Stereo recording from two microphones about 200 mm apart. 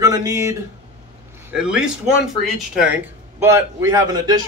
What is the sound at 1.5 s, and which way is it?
A man's voice, 5° right (ahead or behind).